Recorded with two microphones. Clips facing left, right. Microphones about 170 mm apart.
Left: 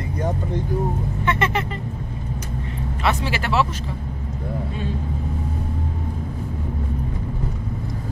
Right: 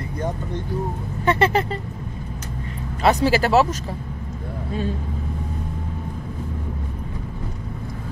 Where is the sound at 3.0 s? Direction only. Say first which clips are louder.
Right 6 dB; 40° right (ahead or behind).